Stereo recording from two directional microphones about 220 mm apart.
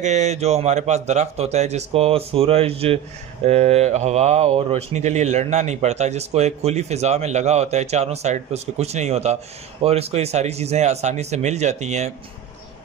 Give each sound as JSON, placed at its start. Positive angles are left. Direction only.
{"t": 0.0, "sound": "speech", "side_deg": -30}